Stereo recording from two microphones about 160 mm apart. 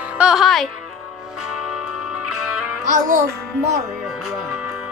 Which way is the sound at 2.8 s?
50° right (ahead or behind).